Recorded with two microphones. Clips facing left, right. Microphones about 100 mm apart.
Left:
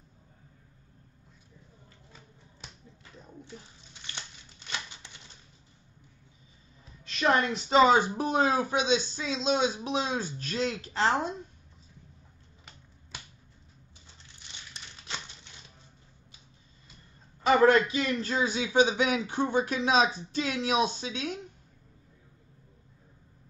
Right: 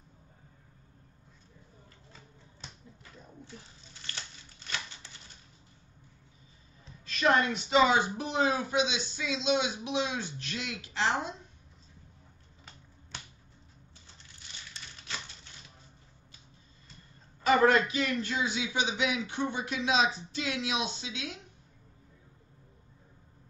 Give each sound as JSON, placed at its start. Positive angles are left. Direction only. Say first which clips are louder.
{"t": 4.6, "sound": "a sound", "louder": "left 1 dB", "side_deg": 20}
{"t": 7.1, "sound": "speech", "louder": "even", "side_deg": 30}
{"t": 17.9, "sound": "speech", "louder": "left 2 dB", "side_deg": 35}